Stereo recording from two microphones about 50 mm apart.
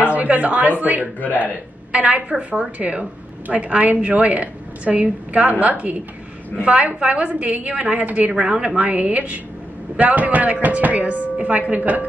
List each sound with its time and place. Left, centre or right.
0.1 s a woman's voice: right
1.2 s a man's voice: left
1.9 s speech: right
8.3 s a woman's voice: centre
8.7 s speech: right